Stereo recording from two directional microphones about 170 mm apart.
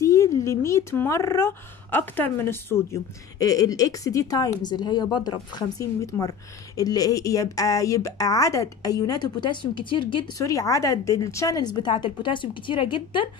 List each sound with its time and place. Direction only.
0.0 s a woman's voice: 15° left (ahead or behind)